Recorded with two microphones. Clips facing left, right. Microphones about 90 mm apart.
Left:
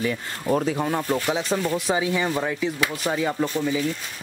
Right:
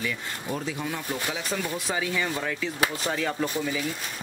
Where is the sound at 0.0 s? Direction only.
45° left (ahead or behind).